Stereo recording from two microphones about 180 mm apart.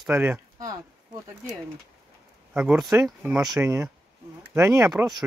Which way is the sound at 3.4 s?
20° right (ahead or behind).